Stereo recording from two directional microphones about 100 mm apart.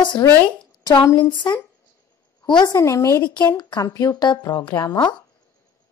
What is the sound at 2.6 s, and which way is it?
A woman's voice, 35° left (ahead or behind).